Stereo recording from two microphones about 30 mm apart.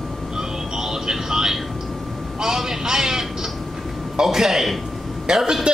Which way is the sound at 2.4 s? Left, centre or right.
Centre.